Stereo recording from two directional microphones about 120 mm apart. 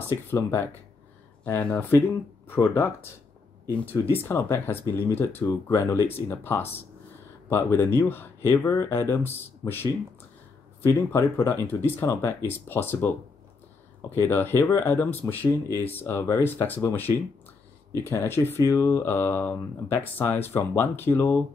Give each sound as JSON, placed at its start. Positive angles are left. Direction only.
{"t": 0.1, "sound": "speech", "side_deg": 20}
{"t": 14.1, "sound": "speech", "side_deg": 20}
{"t": 18.1, "sound": "speech", "side_deg": 20}